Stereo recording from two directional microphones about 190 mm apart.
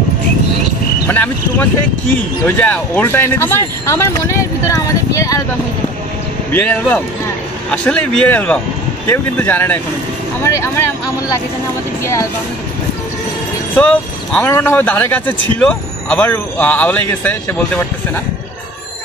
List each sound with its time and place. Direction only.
1.0 s speech: 10° left (ahead or behind)
6.5 s speech: 10° left (ahead or behind)
12.0 s speech: 15° left (ahead or behind)
13.7 s speech: 10° left (ahead or behind)